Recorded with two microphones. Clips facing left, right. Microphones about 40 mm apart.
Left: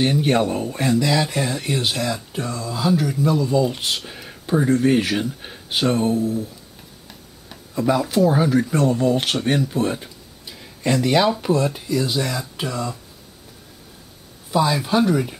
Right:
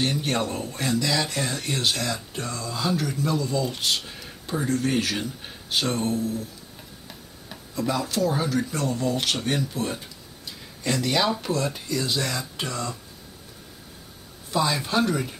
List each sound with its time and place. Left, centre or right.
0.0 s speech: centre
7.7 s speech: centre
9.7 s a sound: centre
11.4 s speech: centre
14.5 s speech: centre